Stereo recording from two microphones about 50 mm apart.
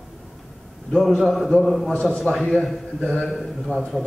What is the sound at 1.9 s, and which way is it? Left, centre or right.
Speech, left.